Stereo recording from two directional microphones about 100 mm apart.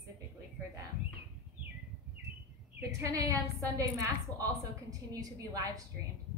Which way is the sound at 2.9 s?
35° right (ahead or behind).